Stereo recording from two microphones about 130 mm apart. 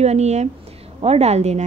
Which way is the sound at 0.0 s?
55° right (ahead or behind).